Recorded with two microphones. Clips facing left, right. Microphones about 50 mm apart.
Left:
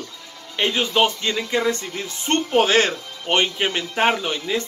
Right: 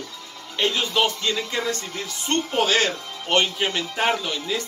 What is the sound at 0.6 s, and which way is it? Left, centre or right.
Speech, left.